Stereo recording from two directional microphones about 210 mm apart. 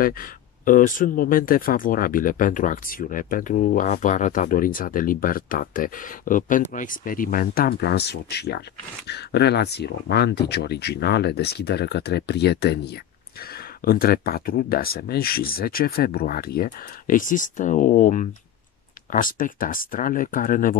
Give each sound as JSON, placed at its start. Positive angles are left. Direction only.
{"t": 0.0, "sound": "speech", "side_deg": 40}